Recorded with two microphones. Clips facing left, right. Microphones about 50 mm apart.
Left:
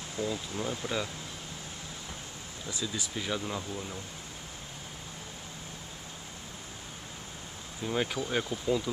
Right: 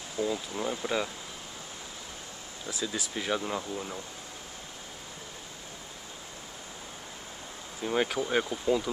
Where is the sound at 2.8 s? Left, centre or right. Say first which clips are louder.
Right 3 dB; centre.